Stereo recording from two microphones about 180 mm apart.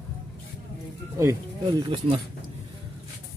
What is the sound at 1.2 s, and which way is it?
Speech, 15° right (ahead or behind).